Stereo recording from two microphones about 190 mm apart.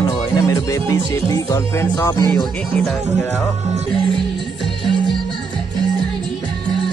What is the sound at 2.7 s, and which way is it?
Speech, centre (ahead or behind).